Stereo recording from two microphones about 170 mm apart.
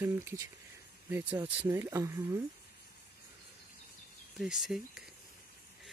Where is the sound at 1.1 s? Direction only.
10° right (ahead or behind).